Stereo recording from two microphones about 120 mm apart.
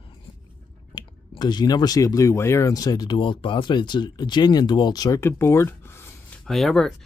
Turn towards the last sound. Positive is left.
turn(degrees=0)  # may be behind; listen again after turning